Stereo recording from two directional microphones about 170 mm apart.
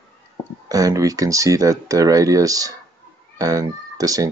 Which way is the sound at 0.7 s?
20° right (ahead or behind).